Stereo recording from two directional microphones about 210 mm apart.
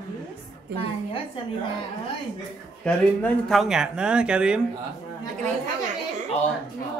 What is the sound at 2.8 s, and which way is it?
Speech, 5° left (ahead or behind).